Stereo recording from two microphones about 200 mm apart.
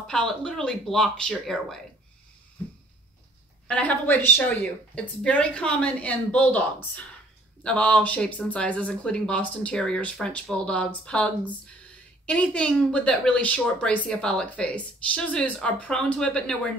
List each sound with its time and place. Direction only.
0.0 s speech: 5° left (ahead or behind)
3.6 s speech: 5° left (ahead or behind)